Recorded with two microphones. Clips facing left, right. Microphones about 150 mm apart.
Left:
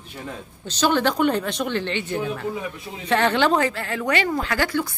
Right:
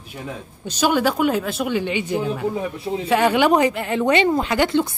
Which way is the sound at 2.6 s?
35° right (ahead or behind).